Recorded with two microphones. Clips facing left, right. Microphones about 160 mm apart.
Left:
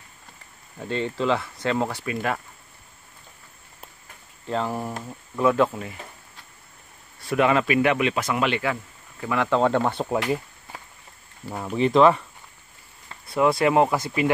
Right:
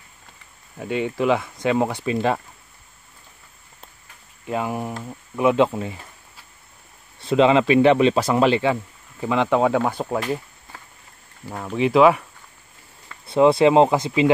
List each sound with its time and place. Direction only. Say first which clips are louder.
0.7 s speech: right 3 dB; 10° right (ahead or behind)
4.5 s speech: right 1 dB; 10° right (ahead or behind)
7.2 s speech: right 5 dB; 25° right (ahead or behind)
9.6 s speech: right 2 dB; 5° right (ahead or behind)
11.5 s speech: even; 5° left (ahead or behind)
11.8 s speech: right 2 dB; 5° right (ahead or behind)
13.3 s speech: right 5 dB; 25° right (ahead or behind)